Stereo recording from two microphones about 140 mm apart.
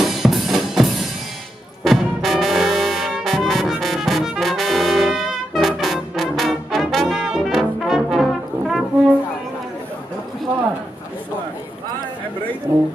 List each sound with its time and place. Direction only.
0.2 s drum: centre (ahead or behind)
1.9 s music: centre (ahead or behind)
12.7 s a sound: 15° right (ahead or behind)